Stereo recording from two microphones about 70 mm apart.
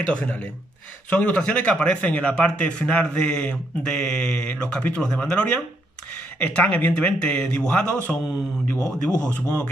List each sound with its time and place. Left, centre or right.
0.1 s a man's voice: centre